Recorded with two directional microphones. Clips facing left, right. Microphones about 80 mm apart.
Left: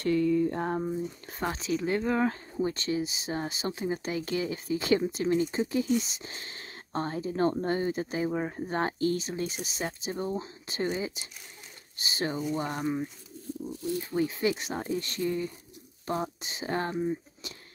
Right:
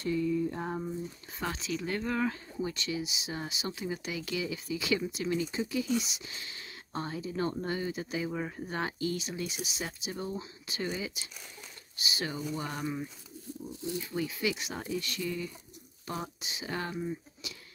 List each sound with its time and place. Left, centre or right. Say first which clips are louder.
0.0 s a sound: left 5 dB; left
1.4 s speech: left 5 dB; left
2.2 s speech: left 4 dB; left